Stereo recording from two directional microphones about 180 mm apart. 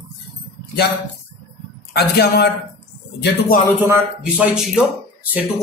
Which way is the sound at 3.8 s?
10° right (ahead or behind).